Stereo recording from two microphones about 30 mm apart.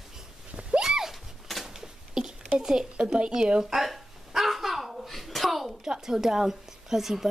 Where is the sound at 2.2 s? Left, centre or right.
Right.